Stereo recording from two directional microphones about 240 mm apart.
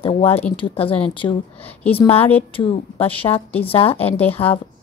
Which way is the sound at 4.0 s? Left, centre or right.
Centre.